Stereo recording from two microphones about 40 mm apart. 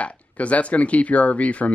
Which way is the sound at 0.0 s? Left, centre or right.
Left.